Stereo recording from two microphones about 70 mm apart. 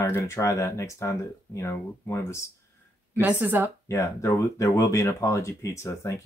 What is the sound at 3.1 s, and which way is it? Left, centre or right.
Speech, right.